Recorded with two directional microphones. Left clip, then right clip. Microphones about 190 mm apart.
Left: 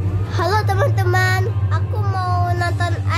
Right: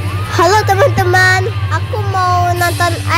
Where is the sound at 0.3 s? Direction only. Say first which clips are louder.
Right 9 dB; 40° right (ahead or behind).